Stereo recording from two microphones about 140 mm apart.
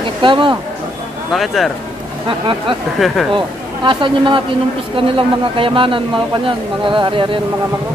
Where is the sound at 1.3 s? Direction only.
Centre (ahead or behind).